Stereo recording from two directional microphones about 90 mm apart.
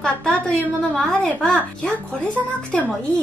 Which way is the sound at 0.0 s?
10° left (ahead or behind).